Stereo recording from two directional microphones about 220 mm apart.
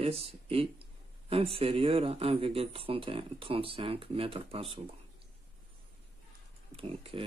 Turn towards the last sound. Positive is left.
turn(degrees=-25)  # may be behind; listen again after turning